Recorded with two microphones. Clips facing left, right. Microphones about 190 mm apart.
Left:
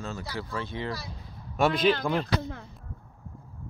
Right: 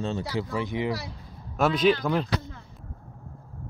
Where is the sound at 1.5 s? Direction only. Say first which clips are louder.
Right 2 dB; centre (ahead or behind).